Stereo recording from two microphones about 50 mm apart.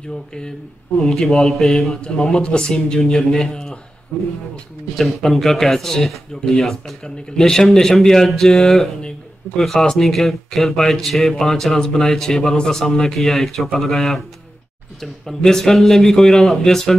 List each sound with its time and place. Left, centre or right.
1.0 s speech: centre
4.1 s speech: left
4.9 s speech: centre